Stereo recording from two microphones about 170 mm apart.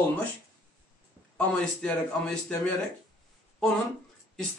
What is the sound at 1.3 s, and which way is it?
Speech, 5° left (ahead or behind).